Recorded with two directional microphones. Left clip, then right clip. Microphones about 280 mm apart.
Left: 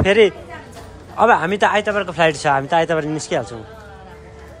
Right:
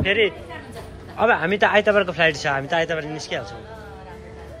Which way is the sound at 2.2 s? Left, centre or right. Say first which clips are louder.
Left 4 dB; centre.